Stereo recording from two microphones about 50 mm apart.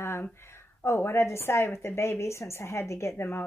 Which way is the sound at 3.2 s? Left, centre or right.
Left.